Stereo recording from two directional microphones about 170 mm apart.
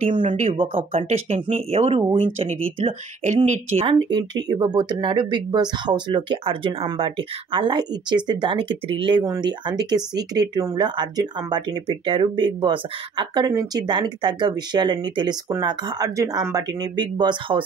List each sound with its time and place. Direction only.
0.2 s speech: 45° right (ahead or behind)
0.6 s speech: 35° right (ahead or behind)
4.0 s speech: 25° right (ahead or behind)